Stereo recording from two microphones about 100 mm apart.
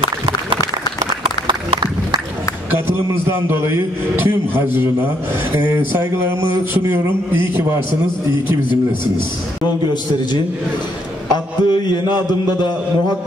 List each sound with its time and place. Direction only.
4.2 s a man's voice: 25° right (ahead or behind)
5.9 s a man's voice: 25° right (ahead or behind)
11.3 s a man's voice: 45° left (ahead or behind)